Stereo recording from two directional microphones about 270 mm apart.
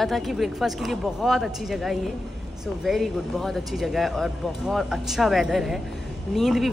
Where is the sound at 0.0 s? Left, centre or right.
Centre.